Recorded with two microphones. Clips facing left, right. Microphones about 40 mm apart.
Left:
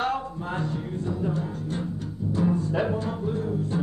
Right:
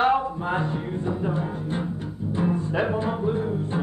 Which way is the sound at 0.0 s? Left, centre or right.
Right.